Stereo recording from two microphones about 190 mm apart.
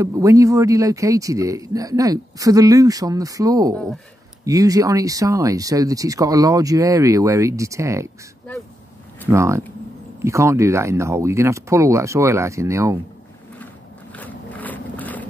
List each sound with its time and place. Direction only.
0.0 s speech: 15° right (ahead or behind)
9.3 s speech: 15° right (ahead or behind)
14.1 s a sound: 10° left (ahead or behind)